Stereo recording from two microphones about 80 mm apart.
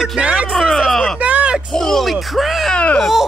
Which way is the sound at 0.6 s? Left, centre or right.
Centre.